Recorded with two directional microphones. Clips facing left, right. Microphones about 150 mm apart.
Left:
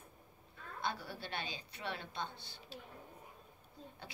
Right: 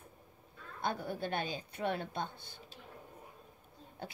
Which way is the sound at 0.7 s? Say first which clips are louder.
Right 5 dB; 50° right (ahead or behind).